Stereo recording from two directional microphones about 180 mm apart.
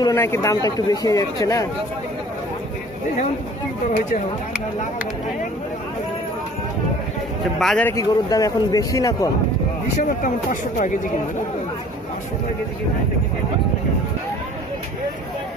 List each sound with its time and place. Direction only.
0.0 s speech: 15° left (ahead or behind)
7.5 s a man's voice: 5° left (ahead or behind)
7.9 s speech: 20° left (ahead or behind)
10.2 s speech: 45° left (ahead or behind)